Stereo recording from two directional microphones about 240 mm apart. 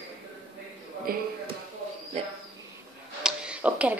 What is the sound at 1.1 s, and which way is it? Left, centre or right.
Speech, right.